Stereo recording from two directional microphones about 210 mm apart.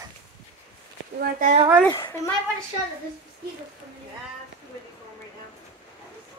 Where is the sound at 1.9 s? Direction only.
15° left (ahead or behind).